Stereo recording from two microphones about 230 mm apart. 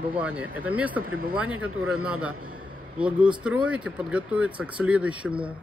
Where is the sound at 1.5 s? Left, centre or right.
Right.